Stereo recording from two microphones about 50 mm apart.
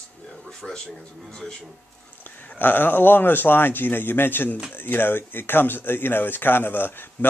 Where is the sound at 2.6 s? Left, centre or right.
Left.